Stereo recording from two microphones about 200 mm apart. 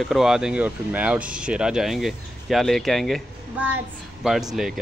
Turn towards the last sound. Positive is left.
turn(degrees=0)  # may be behind; listen again after turning